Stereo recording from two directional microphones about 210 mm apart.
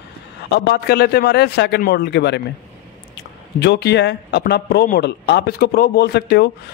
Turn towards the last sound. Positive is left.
turn(degrees=50)  # may be behind; listen again after turning